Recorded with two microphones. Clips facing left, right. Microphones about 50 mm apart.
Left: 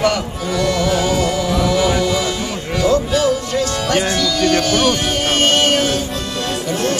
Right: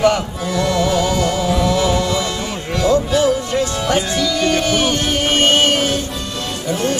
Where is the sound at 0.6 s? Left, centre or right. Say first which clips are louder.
Even; centre.